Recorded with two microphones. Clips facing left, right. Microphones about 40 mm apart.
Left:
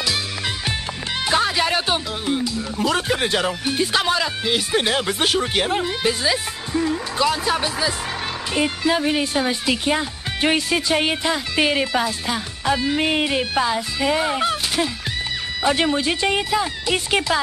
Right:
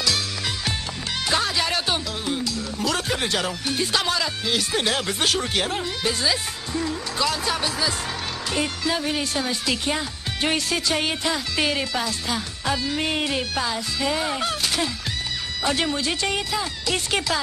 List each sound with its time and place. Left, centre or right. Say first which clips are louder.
1.2 s speech: left 4 dB; centre